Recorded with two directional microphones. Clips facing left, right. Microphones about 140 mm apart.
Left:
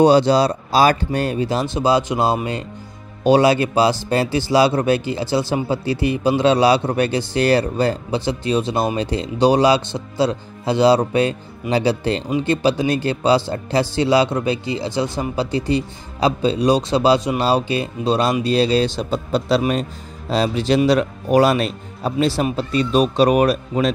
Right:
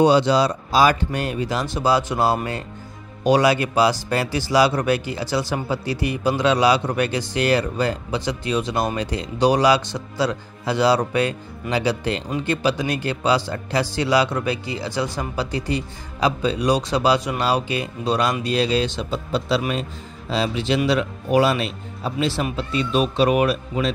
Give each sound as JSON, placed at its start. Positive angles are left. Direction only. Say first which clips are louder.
{"t": 0.0, "sound": "speech", "louder": "left 3 dB", "side_deg": 40}